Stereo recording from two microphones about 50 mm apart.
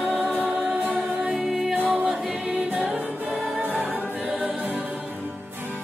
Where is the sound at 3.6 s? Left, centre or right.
Right.